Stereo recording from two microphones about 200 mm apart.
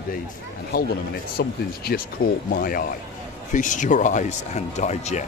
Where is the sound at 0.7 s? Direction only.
45° left (ahead or behind).